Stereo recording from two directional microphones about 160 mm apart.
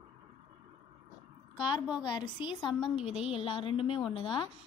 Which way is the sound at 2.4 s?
30° left (ahead or behind).